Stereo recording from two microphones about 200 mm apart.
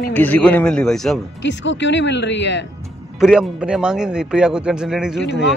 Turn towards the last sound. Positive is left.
turn(degrees=-5)  # may be behind; listen again after turning